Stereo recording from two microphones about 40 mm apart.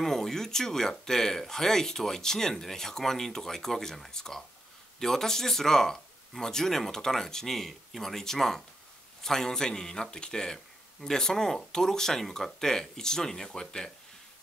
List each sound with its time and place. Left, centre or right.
0.0 s speech: centre